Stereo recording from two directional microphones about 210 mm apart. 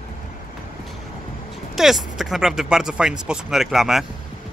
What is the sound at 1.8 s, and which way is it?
Speech, centre (ahead or behind).